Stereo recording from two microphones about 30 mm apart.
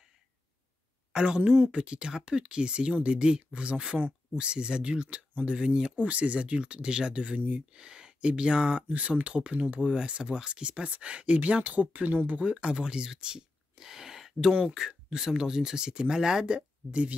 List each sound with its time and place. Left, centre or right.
1.1 s speech: right
5.9 s speech: right
7.3 s speech: right
7.7 s a sound: right
8.3 s speech: right
8.9 s speech: right
9.8 s speech: right
12.8 s speech: right